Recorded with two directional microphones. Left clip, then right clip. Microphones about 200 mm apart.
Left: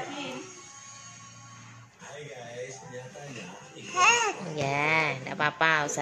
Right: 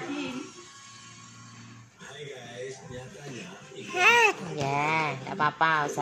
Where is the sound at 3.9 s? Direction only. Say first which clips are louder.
Even; centre (ahead or behind).